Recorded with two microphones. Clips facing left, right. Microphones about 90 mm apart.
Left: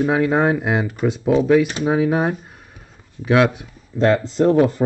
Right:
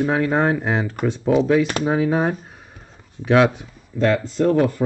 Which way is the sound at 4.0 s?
25° left (ahead or behind).